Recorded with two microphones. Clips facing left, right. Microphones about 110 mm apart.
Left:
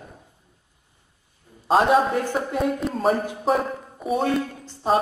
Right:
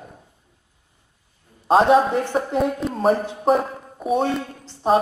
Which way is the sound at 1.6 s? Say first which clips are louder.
Right 3 dB; centre (ahead or behind).